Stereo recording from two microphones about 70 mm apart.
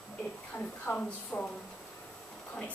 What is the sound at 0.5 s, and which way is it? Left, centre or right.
Speech, centre.